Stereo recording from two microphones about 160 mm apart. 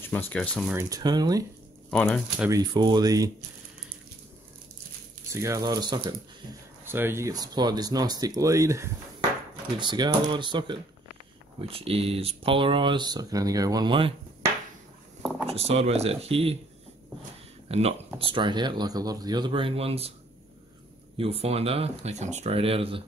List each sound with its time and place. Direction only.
0.1 s speech: 10° left (ahead or behind)
0.8 s speech: 25° right (ahead or behind)
1.9 s speech: 5° left (ahead or behind)
2.5 s speech: 25° right (ahead or behind)
5.3 s speech: 20° right (ahead or behind)
6.8 s speech: 15° right (ahead or behind); by 14.1 s 30° right (ahead or behind)
15.4 s speech: 40° right (ahead or behind)
17.6 s speech: 40° right (ahead or behind)
18.2 s speech: 30° right (ahead or behind)
21.2 s speech: 40° right (ahead or behind)